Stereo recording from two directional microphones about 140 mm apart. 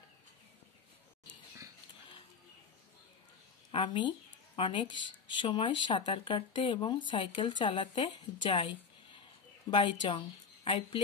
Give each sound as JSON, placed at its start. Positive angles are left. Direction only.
{"t": 3.7, "sound": "speech", "side_deg": 35}